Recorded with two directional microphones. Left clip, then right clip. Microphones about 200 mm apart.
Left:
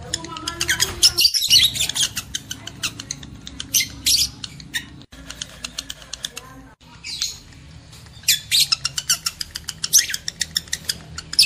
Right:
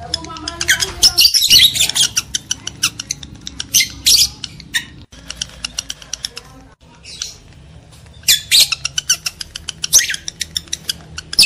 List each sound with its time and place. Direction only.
0.1 s bird: 10° right (ahead or behind)
2.1 s a sound: 20° right (ahead or behind)
3.7 s squawk: centre (ahead or behind)
4.7 s scissors: centre (ahead or behind)
5.3 s a sound: 15° right (ahead or behind)
8.3 s squawk: centre (ahead or behind)
8.6 s bird: 15° right (ahead or behind)
9.8 s rodents: centre (ahead or behind)
10.1 s rodents: 20° right (ahead or behind)